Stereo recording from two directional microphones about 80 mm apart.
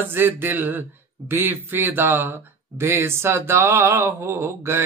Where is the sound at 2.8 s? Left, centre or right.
Right.